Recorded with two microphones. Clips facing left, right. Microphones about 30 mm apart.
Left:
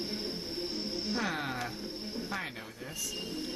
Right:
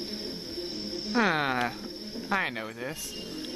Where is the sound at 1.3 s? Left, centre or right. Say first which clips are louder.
Right 8 dB; right.